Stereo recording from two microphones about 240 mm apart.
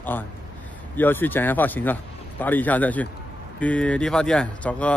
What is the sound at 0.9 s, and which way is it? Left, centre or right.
A man's voice, centre.